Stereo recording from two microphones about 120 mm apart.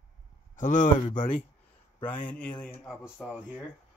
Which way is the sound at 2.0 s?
10° left (ahead or behind).